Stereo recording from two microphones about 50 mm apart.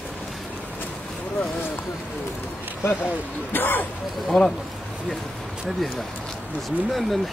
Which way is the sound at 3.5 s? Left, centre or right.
Left.